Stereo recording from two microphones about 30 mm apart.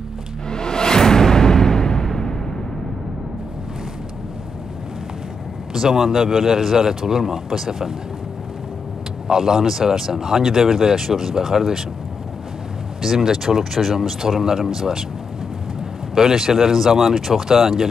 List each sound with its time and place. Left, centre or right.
0.5 s music: left
5.7 s a sound: centre
6.0 s speech: centre
9.3 s speech: right
13.0 s speech: centre
16.2 s speech: centre